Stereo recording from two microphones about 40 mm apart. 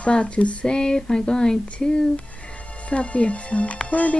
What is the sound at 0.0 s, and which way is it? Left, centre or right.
Speech, left.